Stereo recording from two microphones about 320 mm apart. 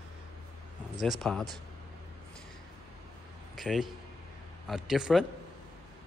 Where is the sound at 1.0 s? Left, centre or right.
Centre.